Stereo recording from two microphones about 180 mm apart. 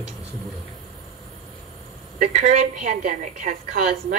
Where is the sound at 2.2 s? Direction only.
40° right (ahead or behind).